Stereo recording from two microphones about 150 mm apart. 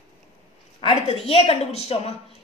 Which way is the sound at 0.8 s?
40° left (ahead or behind).